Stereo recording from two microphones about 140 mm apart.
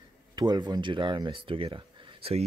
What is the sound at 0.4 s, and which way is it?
Speech, 30° right (ahead or behind).